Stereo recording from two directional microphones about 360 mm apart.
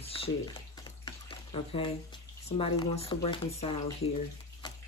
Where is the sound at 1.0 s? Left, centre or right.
Centre.